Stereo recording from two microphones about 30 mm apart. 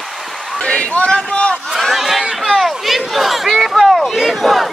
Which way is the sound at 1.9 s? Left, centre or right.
Centre.